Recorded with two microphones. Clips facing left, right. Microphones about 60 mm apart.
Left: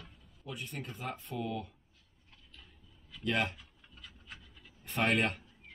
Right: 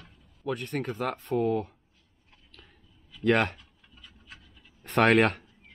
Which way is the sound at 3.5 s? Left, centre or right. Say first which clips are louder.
Right 1 dB; centre.